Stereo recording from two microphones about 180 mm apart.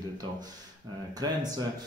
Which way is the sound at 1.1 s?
20° right (ahead or behind).